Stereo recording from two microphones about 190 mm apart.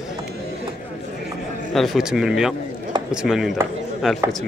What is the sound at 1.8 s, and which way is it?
Speech, 5° right (ahead or behind).